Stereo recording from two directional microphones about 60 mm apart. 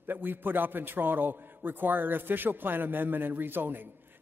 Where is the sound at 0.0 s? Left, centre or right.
Right.